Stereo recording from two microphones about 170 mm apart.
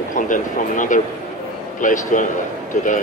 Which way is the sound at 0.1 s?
50° left (ahead or behind).